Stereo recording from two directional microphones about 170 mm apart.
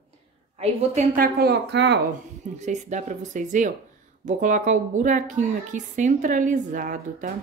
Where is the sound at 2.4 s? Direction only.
45° right (ahead or behind).